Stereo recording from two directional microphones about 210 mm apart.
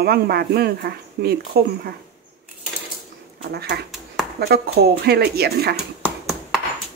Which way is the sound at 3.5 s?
50° right (ahead or behind).